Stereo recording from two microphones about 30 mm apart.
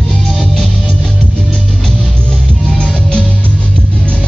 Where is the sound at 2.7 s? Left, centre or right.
Left.